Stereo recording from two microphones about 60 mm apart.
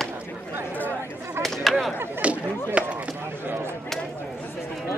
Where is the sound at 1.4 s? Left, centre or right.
Centre.